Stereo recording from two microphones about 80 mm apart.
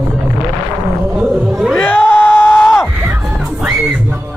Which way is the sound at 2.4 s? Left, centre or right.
Centre.